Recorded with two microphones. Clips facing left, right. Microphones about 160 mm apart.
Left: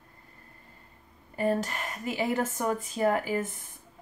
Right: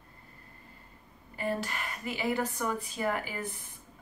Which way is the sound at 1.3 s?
45° left (ahead or behind).